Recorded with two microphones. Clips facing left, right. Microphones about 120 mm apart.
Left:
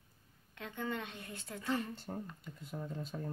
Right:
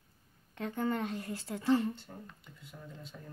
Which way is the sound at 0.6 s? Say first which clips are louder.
Right 7 dB; 40° right (ahead or behind).